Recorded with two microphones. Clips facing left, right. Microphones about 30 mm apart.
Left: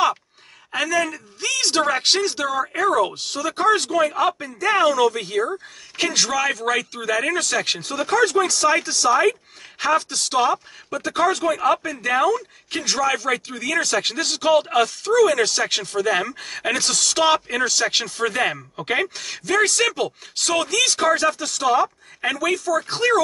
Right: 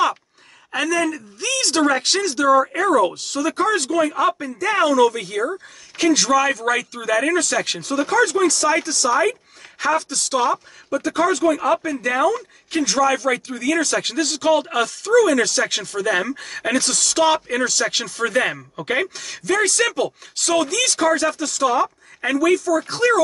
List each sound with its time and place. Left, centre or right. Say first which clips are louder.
0.7 s speech: right 1 dB; centre
2.4 s speech: right 5 dB; centre
3.2 s speech: right 2 dB; centre
11.2 s speech: even; centre